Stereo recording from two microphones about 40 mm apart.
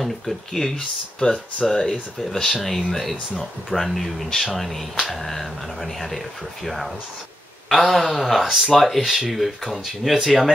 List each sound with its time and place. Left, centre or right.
0.0 s speech: centre
0.7 s speech: centre